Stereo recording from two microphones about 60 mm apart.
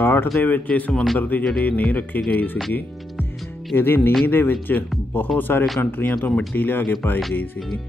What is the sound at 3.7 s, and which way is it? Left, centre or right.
Speech, left.